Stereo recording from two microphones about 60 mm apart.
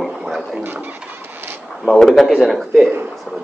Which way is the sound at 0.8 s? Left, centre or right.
Right.